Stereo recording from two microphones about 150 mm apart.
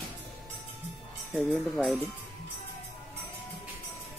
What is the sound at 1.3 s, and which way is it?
Speech, centre (ahead or behind).